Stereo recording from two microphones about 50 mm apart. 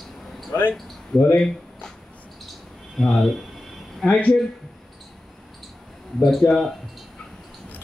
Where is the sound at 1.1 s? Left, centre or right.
Centre.